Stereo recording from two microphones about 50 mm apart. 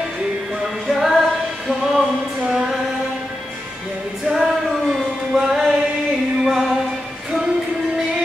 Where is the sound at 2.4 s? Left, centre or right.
Centre.